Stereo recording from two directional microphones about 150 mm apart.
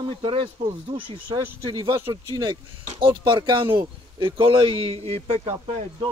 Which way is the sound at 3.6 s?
35° right (ahead or behind).